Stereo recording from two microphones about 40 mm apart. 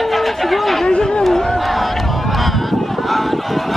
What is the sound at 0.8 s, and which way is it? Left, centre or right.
Chatter, left.